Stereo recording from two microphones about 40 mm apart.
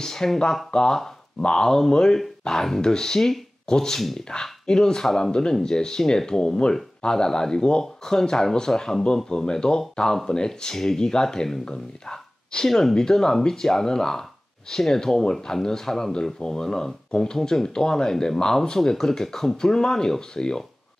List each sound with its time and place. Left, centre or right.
0.0 s speech: centre